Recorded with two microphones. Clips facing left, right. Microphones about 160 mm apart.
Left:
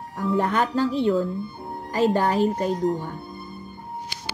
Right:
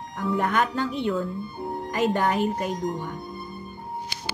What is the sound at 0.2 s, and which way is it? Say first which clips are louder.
Speech: left 2 dB; 30° left (ahead or behind).